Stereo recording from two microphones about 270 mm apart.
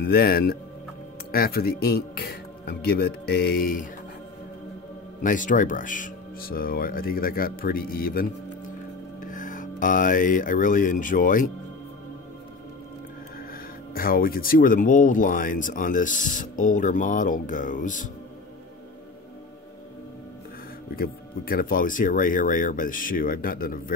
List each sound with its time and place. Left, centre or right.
0.0 s speech: left
5.2 s speech: left
13.9 s speech: left
20.9 s speech: left